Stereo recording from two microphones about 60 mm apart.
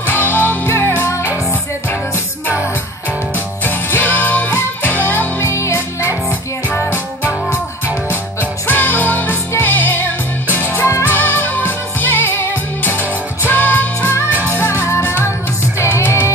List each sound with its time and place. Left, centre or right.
0.2 s music: left
3.6 s music: left
5.5 s music: left
6.9 s music: right
8.6 s music: left
10.5 s music: right
11.1 s music: left
14.3 s music: right
14.6 s music: left